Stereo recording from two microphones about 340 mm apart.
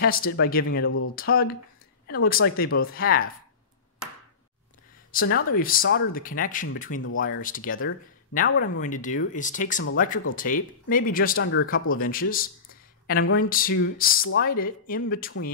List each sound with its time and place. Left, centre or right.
0.0 s speech: left
1.1 s speech: left
5.2 s speech: left